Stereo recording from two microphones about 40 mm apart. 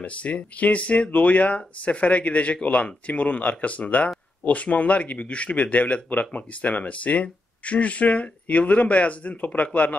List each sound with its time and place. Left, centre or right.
0.0 s speech: left